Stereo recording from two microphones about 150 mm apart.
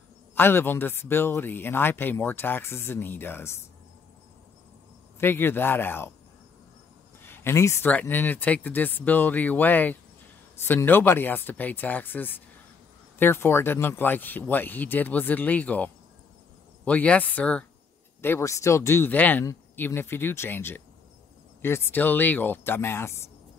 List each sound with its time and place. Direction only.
0.3 s a man's voice: 15° left (ahead or behind)
5.2 s a man's voice: 15° left (ahead or behind)
7.2 s a man's voice: 15° left (ahead or behind)